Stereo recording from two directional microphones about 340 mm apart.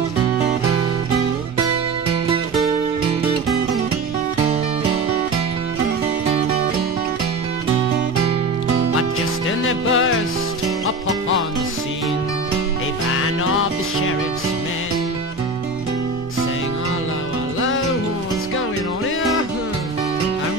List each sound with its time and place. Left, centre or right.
9.7 s music: left